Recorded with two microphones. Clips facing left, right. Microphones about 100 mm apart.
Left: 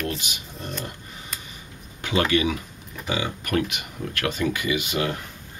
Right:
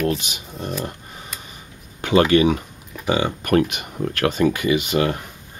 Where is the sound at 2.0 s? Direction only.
45° right (ahead or behind).